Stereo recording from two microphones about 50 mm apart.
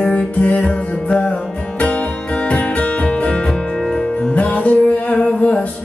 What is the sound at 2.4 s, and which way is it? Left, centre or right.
Music, left.